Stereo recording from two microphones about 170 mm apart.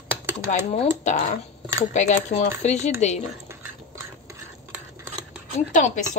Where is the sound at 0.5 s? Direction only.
45° left (ahead or behind).